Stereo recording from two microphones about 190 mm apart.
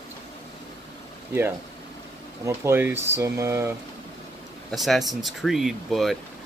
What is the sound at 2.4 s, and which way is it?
Speech, 15° right (ahead or behind).